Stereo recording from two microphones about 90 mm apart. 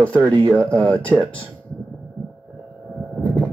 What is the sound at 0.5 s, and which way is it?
Speech, 35° right (ahead or behind).